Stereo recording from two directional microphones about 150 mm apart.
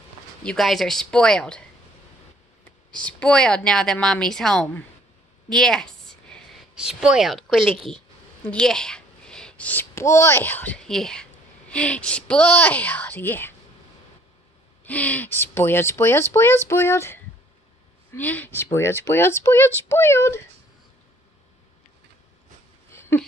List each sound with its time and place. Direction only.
0.4 s a woman's voice: 5° left (ahead or behind)
2.9 s a woman's voice: 10° left (ahead or behind)
5.5 s a sound: 5° left (ahead or behind)
6.7 s a woman's voice: 5° right (ahead or behind); by 13.6 s 15° left (ahead or behind)
14.8 s speech: 10° left (ahead or behind)
22.8 s a sound: 15° left (ahead or behind)